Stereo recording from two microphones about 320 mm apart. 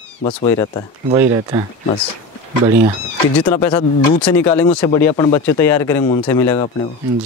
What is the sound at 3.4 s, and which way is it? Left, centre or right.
Speech, centre.